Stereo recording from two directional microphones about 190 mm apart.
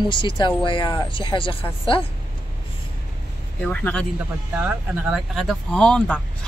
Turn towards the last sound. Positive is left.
turn(degrees=5)  # may be behind; listen again after turning